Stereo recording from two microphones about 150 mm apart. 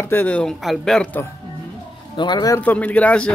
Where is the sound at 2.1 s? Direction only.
30° left (ahead or behind).